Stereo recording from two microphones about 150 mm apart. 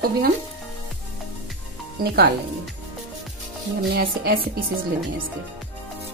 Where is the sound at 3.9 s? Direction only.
90° right.